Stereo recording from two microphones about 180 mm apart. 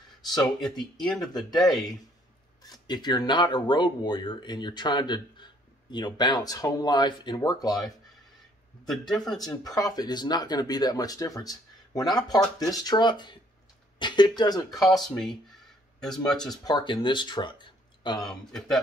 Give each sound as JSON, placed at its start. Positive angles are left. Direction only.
{"t": 0.2, "sound": "speech", "side_deg": 20}
{"t": 0.6, "sound": "speech", "side_deg": 0}
{"t": 2.6, "sound": "speech", "side_deg": 20}
{"t": 8.8, "sound": "speech", "side_deg": 0}
{"t": 9.4, "sound": "speech", "side_deg": 20}
{"t": 14.7, "sound": "speech", "side_deg": 0}
{"t": 16.6, "sound": "speech", "side_deg": 25}
{"t": 18.2, "sound": "speech", "side_deg": 0}